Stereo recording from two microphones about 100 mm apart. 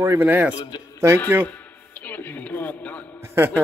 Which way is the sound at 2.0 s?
20° left (ahead or behind).